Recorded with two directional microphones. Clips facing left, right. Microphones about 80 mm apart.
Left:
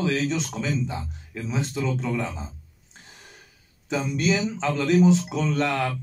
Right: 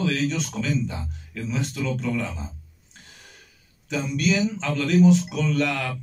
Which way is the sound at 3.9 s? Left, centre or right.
Left.